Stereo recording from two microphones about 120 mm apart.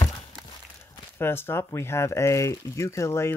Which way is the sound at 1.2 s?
20° left (ahead or behind).